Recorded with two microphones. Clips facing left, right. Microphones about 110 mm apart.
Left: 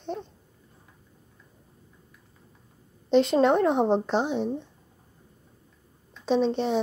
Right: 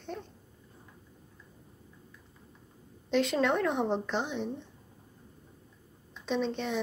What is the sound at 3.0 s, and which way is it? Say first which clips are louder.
A woman's voice: left 7 dB; 30° left (ahead or behind).